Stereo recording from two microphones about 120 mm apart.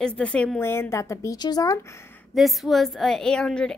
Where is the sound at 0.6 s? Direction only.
20° left (ahead or behind).